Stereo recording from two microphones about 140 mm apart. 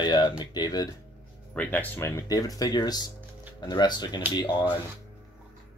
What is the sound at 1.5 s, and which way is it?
Speech, 15° left (ahead or behind).